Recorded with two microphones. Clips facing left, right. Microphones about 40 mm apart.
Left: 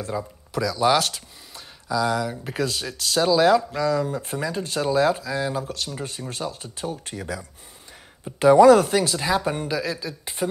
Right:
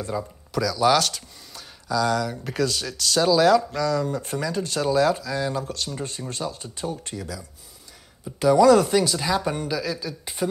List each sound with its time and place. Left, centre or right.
0.0 s speech: centre
7.2 s speech: left; by 10.5 s centre